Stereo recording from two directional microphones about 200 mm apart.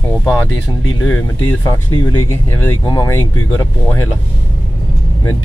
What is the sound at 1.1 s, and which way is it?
Speech, 15° left (ahead or behind).